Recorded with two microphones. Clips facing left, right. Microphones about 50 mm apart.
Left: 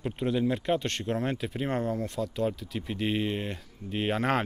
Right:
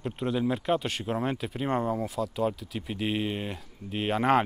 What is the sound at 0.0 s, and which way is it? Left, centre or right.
Speech, centre.